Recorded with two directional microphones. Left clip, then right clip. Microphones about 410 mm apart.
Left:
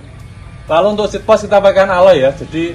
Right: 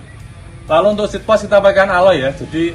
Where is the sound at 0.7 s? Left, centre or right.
Centre.